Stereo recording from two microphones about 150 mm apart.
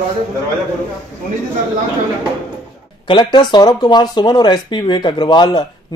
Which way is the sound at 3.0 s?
30° left (ahead or behind).